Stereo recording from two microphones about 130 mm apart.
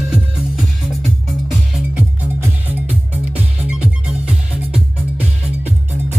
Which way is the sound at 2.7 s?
15° right (ahead or behind).